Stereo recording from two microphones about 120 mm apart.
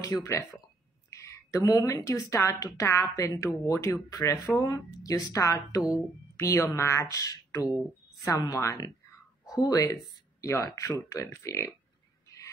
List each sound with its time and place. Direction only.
0.0 s a woman's voice: 25° left (ahead or behind)
1.1 s a sound: 25° left (ahead or behind)
1.6 s a woman's voice: 30° left (ahead or behind)